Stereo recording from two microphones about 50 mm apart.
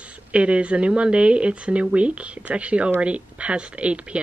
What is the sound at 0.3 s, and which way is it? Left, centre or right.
Speech, right.